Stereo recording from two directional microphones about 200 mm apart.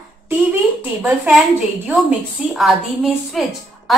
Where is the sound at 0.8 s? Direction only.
5° right (ahead or behind).